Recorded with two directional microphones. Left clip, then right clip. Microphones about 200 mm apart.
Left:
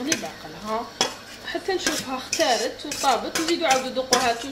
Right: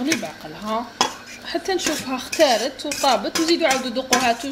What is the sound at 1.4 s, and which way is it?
Speech, 50° right (ahead or behind).